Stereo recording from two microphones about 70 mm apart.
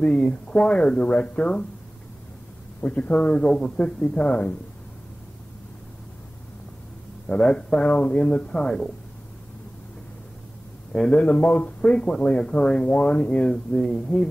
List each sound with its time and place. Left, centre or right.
0.0 s speech: centre
2.8 s speech: left
7.2 s speech: centre
10.9 s speech: centre